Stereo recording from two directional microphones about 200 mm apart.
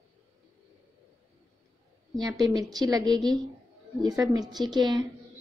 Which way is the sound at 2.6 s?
20° right (ahead or behind).